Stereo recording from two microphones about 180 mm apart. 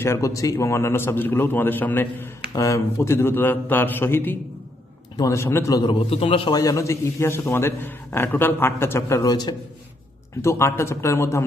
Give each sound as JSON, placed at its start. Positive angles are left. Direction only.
{"t": 0.0, "sound": "a man's voice", "side_deg": 15}
{"t": 6.6, "sound": "a man's voice", "side_deg": 15}